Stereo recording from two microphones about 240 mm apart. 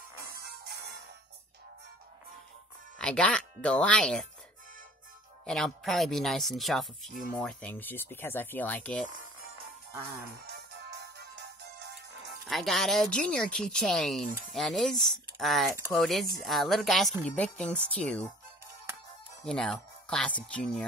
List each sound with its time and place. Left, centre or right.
3.0 s speech: centre
5.4 s speech: centre
10.4 s music: right
12.4 s speech: centre
19.4 s speech: centre